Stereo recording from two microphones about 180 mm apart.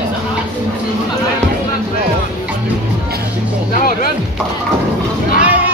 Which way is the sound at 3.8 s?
55° left (ahead or behind).